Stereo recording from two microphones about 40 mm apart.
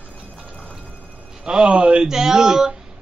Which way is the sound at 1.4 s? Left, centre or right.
Right.